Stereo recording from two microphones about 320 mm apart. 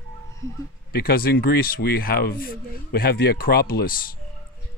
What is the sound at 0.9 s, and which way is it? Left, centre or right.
Speech, left.